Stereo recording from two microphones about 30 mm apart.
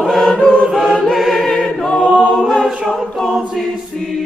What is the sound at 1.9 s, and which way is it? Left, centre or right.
Choir, left.